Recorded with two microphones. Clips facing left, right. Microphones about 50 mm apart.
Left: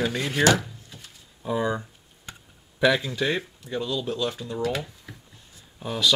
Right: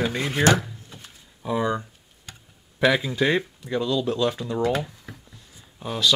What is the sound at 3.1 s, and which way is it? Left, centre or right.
Speech, right.